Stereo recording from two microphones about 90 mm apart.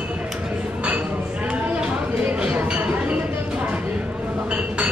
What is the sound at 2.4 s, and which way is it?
Chink, 15° right (ahead or behind).